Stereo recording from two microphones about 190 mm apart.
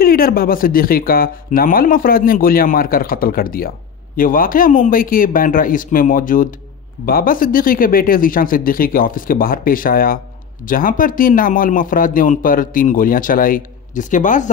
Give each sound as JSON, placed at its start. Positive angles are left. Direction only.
{"t": 0.0, "sound": "speech", "side_deg": 50}